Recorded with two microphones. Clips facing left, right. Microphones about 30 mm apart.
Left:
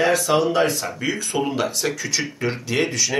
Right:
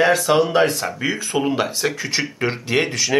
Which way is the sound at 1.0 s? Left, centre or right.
Centre.